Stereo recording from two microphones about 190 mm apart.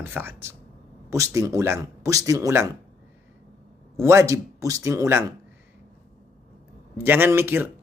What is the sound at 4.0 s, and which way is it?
A man's voice, 15° right (ahead or behind).